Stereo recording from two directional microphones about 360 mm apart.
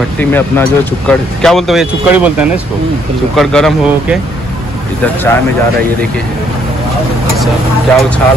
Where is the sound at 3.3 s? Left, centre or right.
Centre.